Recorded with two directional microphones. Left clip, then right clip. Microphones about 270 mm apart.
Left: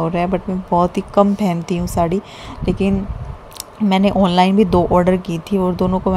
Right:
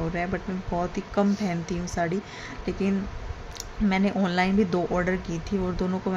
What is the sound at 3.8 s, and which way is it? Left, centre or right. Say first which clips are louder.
Speech: left 11 dB; left.